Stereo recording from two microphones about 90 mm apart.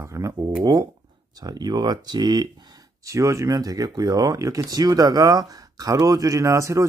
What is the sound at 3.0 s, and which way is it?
Speech, 35° right (ahead or behind).